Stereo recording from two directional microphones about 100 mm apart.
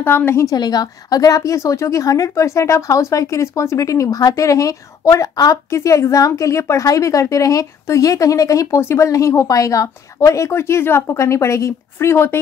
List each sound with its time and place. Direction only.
0.0 s a woman's voice: 20° left (ahead or behind)
0.6 s a woman's voice: 40° left (ahead or behind); by 12.4 s 25° left (ahead or behind)